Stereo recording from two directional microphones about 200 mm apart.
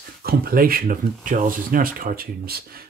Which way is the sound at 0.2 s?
50° right (ahead or behind).